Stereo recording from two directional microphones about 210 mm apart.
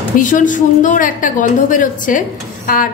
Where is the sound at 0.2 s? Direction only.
40° left (ahead or behind).